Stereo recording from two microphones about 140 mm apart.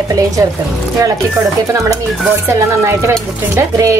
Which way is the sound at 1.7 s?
25° right (ahead or behind).